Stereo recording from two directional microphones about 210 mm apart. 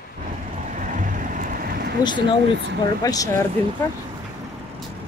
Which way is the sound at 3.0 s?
15° left (ahead or behind).